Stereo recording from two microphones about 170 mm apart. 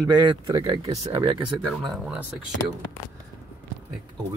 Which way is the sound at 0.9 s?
40° right (ahead or behind).